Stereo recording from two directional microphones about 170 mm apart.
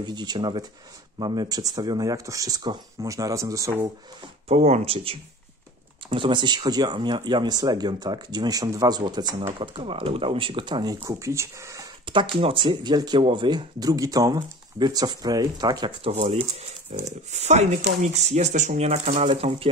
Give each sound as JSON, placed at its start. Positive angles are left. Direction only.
{"t": 0.0, "sound": "speech", "side_deg": -25}
{"t": 4.5, "sound": "speech", "side_deg": -40}
{"t": 12.1, "sound": "speech", "side_deg": -30}
{"t": 16.0, "sound": "speech", "side_deg": -35}